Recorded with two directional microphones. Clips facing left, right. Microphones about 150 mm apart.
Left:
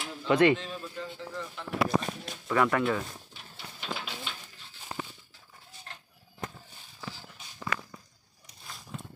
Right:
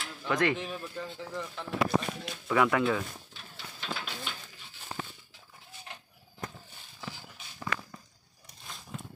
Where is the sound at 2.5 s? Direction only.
5° right (ahead or behind).